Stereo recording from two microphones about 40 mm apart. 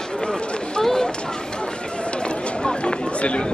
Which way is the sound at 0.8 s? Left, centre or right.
Centre.